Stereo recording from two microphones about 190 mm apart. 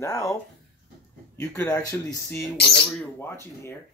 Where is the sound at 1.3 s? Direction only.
10° left (ahead or behind).